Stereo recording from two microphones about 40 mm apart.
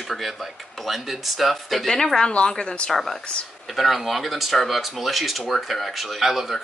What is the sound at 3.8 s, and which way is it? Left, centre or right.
Speech, centre.